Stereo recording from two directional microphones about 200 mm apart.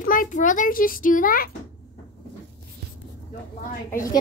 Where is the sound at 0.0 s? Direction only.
45° left (ahead or behind).